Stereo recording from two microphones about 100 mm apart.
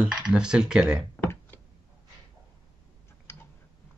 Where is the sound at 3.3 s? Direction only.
25° left (ahead or behind).